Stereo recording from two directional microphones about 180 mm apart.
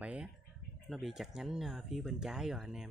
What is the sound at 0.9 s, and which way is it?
Speech, centre (ahead or behind).